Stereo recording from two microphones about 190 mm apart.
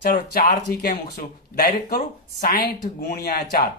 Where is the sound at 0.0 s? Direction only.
50° left (ahead or behind).